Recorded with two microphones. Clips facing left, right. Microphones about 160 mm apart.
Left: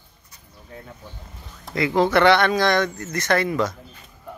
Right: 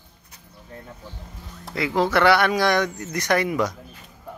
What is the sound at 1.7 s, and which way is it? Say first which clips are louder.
Speech: left 2 dB; 5° right (ahead or behind).